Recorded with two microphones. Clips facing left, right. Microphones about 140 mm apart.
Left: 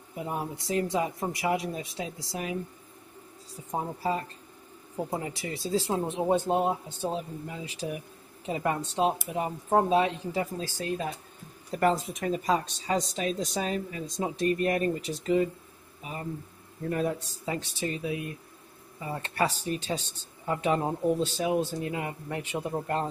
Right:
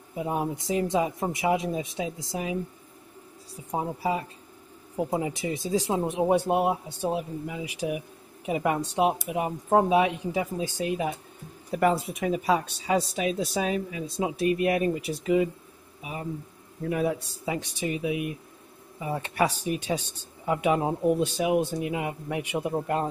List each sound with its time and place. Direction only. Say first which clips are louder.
0.1 s speech: right 5 dB; 20° right (ahead or behind)